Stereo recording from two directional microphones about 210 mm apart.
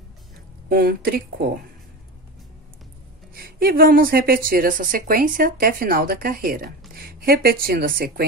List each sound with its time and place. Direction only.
0.7 s a woman's voice: 45° right (ahead or behind)
3.3 s a woman's voice: 45° right (ahead or behind)